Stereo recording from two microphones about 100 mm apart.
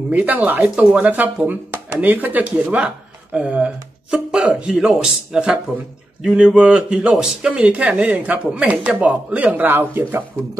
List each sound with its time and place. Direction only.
0.1 s speech: 15° right (ahead or behind)